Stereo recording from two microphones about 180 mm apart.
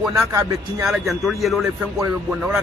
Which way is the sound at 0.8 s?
Centre (ahead or behind).